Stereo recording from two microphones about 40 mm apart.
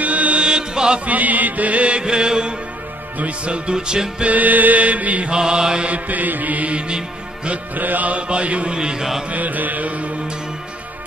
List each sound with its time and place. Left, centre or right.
0.0 s mantra: right
0.4 s mantra: right
1.0 s music: right
3.2 s music: right
4.3 s music: right
5.3 s music: centre
5.9 s music: right
7.7 s music: right
8.7 s music: right
9.3 s music: right